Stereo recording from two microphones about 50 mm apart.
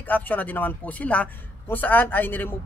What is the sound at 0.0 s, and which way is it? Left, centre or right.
Speech, left.